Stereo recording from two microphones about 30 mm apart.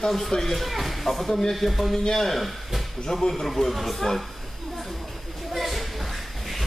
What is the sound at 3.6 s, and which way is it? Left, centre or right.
Speech, centre.